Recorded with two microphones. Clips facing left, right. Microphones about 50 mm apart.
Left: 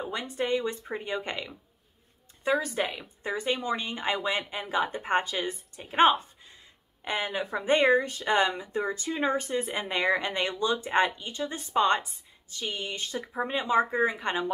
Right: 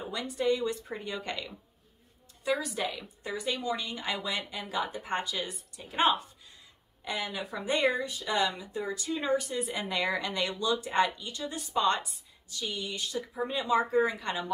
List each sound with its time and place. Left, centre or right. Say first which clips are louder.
0.0 s a woman's voice: even; left
2.4 s a woman's voice: left 4 dB; left